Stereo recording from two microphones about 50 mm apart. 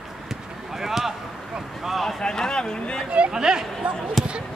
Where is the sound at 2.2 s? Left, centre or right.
Centre.